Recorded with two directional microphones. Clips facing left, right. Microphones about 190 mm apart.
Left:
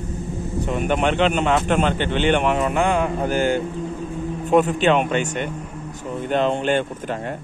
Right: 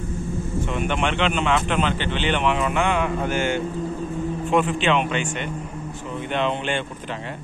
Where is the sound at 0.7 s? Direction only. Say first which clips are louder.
Left 5 dB; 40° left (ahead or behind).